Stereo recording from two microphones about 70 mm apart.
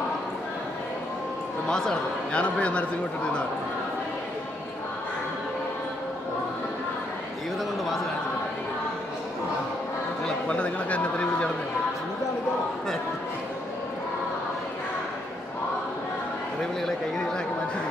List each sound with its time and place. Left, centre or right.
1.7 s a man's voice: centre
10.2 s speech: centre